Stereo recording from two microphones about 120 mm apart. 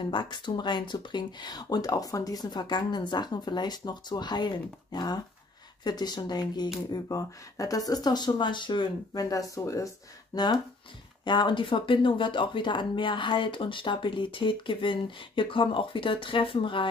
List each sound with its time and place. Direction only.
0.1 s speech: 40° left (ahead or behind)